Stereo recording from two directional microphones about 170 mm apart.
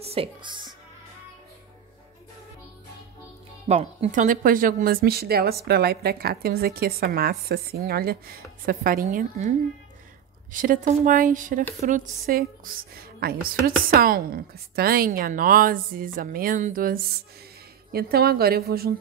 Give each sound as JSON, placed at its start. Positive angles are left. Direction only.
{"t": 0.0, "sound": "a woman's voice", "side_deg": -35}
{"t": 3.6, "sound": "speech", "side_deg": -40}
{"t": 10.5, "sound": "speech", "side_deg": -55}